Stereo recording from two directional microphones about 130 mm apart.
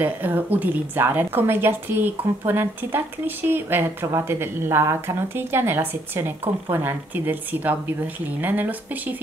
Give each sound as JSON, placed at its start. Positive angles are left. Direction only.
{"t": 0.0, "sound": "speech", "side_deg": -15}